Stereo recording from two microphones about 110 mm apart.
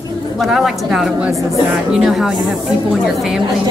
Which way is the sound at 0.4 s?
5° right (ahead or behind).